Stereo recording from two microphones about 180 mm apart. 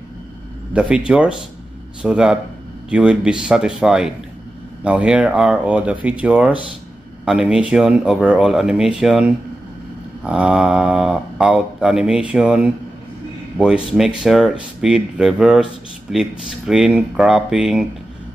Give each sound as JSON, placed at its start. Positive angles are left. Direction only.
{"t": 0.7, "sound": "speech", "side_deg": -5}
{"t": 13.9, "sound": "speech", "side_deg": 0}